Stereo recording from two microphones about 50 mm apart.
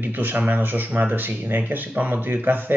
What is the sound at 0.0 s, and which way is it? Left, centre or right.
Speech, right.